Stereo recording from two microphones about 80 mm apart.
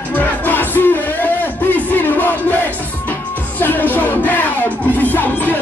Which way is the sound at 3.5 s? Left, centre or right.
Left.